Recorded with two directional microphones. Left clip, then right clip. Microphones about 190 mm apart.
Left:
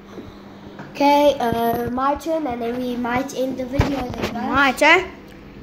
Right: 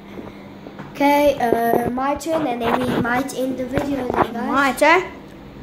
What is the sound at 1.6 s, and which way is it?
Speech, 15° left (ahead or behind).